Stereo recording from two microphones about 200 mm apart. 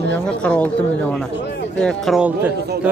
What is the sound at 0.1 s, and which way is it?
Speech, 5° left (ahead or behind).